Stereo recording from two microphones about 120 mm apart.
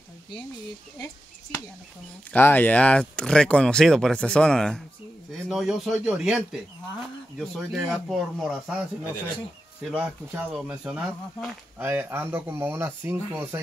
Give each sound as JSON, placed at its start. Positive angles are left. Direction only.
{"t": 2.3, "sound": "speech", "side_deg": 15}
{"t": 9.9, "sound": "speech", "side_deg": -10}